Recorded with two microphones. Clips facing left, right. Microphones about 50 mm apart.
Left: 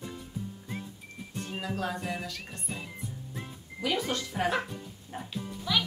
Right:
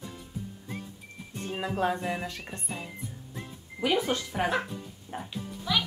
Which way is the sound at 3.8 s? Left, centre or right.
Centre.